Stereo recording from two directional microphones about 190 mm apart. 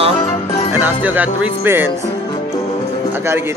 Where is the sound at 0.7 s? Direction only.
10° right (ahead or behind).